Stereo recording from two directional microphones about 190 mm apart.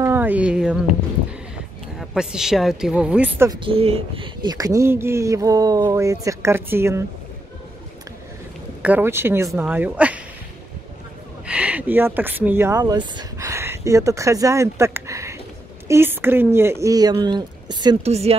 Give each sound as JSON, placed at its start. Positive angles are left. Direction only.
{"t": 0.0, "sound": "speech", "side_deg": -10}
{"t": 2.0, "sound": "speech", "side_deg": -5}
{"t": 3.5, "sound": "speech", "side_deg": -30}
{"t": 8.8, "sound": "speech", "side_deg": -10}
{"t": 11.4, "sound": "speech", "side_deg": -5}
{"t": 18.0, "sound": "speech", "side_deg": -35}